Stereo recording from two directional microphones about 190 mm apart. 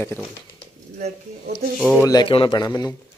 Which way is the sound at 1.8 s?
10° left (ahead or behind).